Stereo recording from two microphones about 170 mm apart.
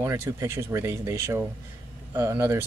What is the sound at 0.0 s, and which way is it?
Speech, 15° right (ahead or behind).